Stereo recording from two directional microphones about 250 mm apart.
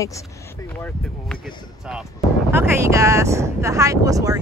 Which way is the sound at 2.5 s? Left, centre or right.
Centre.